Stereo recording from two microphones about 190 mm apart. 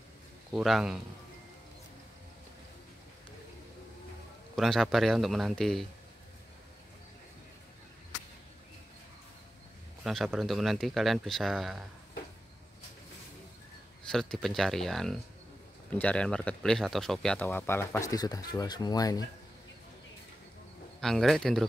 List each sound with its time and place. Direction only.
0.5 s speech: centre (ahead or behind)
4.6 s speech: centre (ahead or behind)
10.0 s speech: centre (ahead or behind)
14.1 s speech: centre (ahead or behind); by 19.2 s 20° left (ahead or behind)
21.0 s speech: centre (ahead or behind)